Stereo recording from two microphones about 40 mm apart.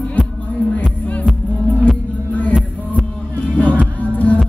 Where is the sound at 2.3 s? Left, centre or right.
Left.